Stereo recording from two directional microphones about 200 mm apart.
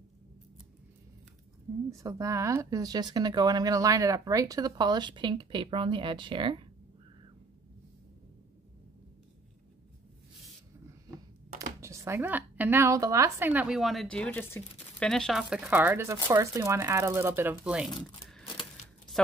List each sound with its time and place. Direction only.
1.9 s speech: 15° right (ahead or behind)
11.8 s a woman's voice: 15° right (ahead or behind)